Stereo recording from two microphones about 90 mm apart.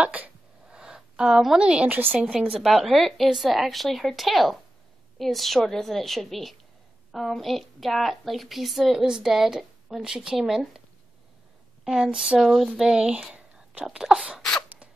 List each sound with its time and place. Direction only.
0.0 s a sound: 15° right (ahead or behind)
2.0 s a woman's voice: 20° right (ahead or behind)
2.3 s speech: 10° right (ahead or behind)
11.8 s speech: 5° right (ahead or behind)